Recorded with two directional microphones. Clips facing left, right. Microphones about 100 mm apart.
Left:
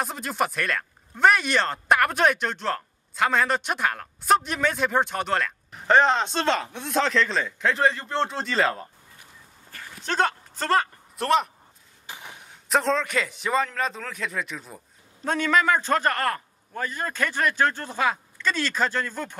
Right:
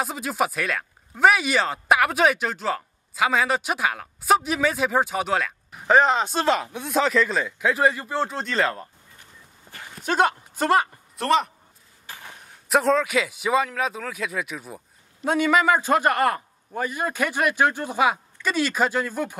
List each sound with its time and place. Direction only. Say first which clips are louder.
0.0 s speech: right 2 dB; 5° right (ahead or behind)
9.9 s speech: right 3 dB; 10° right (ahead or behind)
11.1 s speech: right 1 dB; centre (ahead or behind)
12.1 s a sound: even; 15° left (ahead or behind)
12.6 s a man's voice: right 3 dB; 5° right (ahead or behind)